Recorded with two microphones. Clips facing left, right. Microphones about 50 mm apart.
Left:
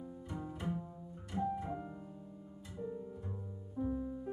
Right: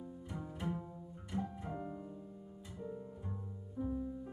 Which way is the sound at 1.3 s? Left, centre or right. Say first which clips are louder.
Left 4 dB; centre.